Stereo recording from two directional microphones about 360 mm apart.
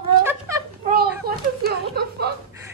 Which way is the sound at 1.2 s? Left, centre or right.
Right.